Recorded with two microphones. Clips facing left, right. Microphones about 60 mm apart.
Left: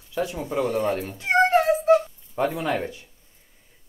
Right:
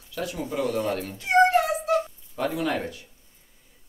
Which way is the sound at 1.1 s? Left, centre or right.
Left.